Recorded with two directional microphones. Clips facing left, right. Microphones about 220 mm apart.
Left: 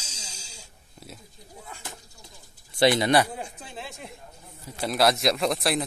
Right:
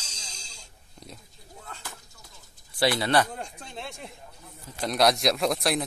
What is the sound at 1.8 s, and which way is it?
Snake, 25° left (ahead or behind).